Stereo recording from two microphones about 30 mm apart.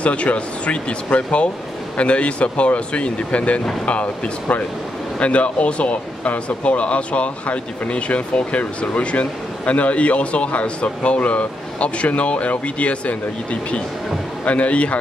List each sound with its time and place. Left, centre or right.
0.0 s speech: left
3.8 s speech: left
5.2 s speech: left